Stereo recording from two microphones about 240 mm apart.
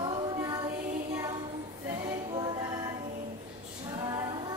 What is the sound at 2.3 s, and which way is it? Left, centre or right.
Music, centre.